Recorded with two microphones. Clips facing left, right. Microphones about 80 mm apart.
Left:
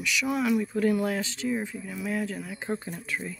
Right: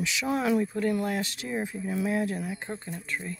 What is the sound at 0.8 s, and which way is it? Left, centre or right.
Speech, centre.